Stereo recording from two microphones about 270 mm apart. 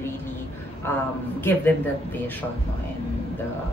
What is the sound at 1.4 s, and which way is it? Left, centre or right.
Speech, centre.